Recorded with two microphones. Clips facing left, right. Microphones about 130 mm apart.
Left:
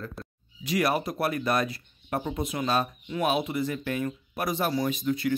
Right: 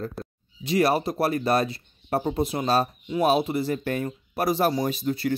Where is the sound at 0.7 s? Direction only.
30° right (ahead or behind).